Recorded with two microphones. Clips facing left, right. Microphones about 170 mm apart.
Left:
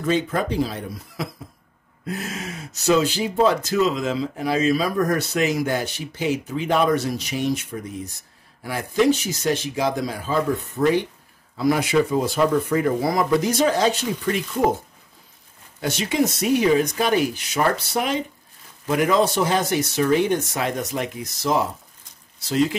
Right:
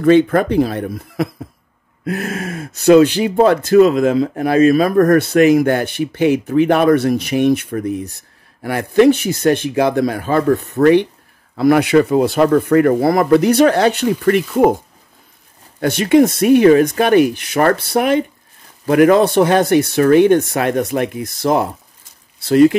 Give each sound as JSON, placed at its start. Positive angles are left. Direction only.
{"t": 0.0, "sound": "speech", "side_deg": -60}
{"t": 15.8, "sound": "speech", "side_deg": -60}